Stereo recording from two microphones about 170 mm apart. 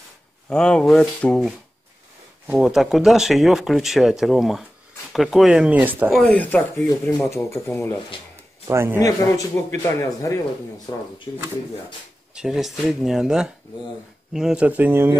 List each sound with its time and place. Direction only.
0.5 s speech: 5° left (ahead or behind)
2.4 s speech: 5° right (ahead or behind)
6.1 s speech: 5° left (ahead or behind)
8.6 s speech: 15° right (ahead or behind)
9.0 s a man's voice: 20° left (ahead or behind)
12.4 s speech: 5° right (ahead or behind)